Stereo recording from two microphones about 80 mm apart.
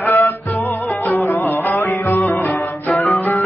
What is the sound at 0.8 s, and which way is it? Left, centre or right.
Music, centre.